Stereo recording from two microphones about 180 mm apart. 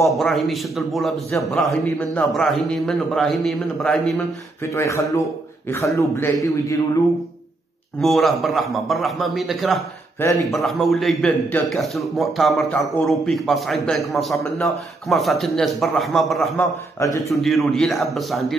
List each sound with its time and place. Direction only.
0.1 s a man's voice: centre (ahead or behind)
8.0 s a man's voice: centre (ahead or behind)